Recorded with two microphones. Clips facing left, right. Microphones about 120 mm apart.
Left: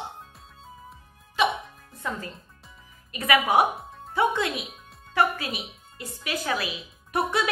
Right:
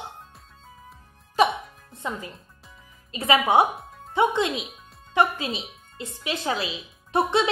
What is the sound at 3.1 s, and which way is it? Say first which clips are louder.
A woman's voice: right 2 dB; 25° right (ahead or behind).